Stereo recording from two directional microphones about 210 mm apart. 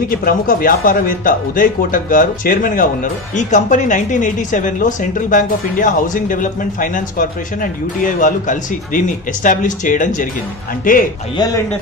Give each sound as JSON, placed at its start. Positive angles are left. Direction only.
{"t": 0.1, "sound": "speech", "side_deg": 45}
{"t": 11.3, "sound": "speech", "side_deg": 20}